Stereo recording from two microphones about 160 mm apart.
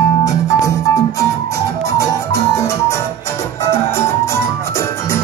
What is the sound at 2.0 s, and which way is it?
Music, 20° left (ahead or behind).